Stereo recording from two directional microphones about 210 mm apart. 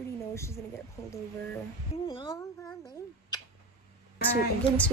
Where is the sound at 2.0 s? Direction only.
20° left (ahead or behind).